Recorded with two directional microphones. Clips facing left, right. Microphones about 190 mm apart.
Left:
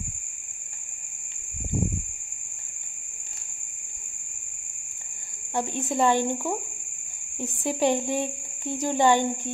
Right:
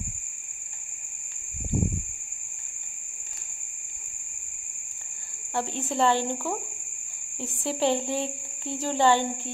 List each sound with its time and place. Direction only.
5.5 s speech: 15° left (ahead or behind)